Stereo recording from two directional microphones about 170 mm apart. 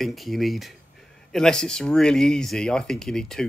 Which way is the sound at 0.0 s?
Centre (ahead or behind).